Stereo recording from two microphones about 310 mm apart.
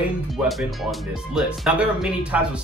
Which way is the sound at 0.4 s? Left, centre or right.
Centre.